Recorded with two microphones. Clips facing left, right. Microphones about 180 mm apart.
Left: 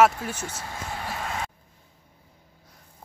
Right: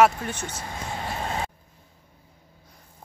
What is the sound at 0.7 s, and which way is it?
Vehicle, 25° right (ahead or behind).